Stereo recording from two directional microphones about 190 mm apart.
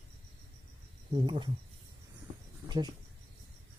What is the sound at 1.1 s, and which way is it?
Speech, 25° right (ahead or behind).